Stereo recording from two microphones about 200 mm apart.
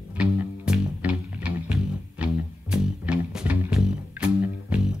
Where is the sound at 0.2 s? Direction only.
5° right (ahead or behind).